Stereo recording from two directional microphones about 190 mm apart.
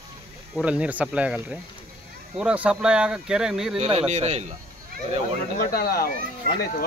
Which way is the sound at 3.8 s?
35° right (ahead or behind).